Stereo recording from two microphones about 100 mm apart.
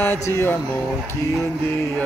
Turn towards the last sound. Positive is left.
turn(degrees=20)  # may be behind; listen again after turning